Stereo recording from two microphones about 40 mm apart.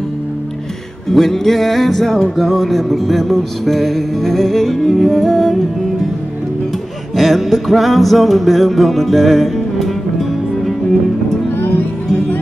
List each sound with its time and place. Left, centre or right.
1.1 s music: centre
7.2 s music: centre
11.5 s music: left